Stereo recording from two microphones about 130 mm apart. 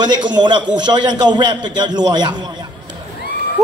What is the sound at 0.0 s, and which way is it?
A man's voice, 35° right (ahead or behind).